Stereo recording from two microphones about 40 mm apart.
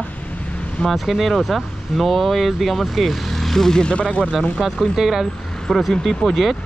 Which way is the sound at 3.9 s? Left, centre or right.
Left.